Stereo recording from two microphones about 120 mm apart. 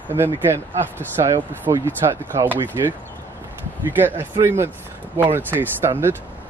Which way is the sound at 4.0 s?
15° right (ahead or behind).